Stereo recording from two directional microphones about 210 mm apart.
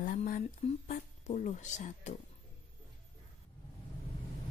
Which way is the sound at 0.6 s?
30° left (ahead or behind).